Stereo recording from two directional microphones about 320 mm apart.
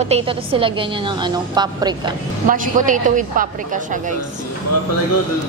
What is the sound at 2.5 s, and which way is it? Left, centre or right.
Speech, right.